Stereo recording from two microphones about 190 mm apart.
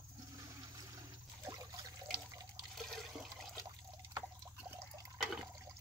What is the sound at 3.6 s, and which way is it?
Drip, 20° right (ahead or behind).